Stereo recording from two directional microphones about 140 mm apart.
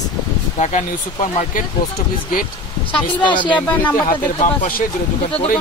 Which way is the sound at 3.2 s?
35° left (ahead or behind).